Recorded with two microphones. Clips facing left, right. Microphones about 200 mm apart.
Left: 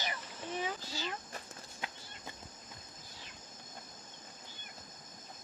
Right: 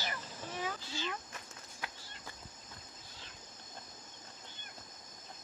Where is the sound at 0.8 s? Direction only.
40° left (ahead or behind).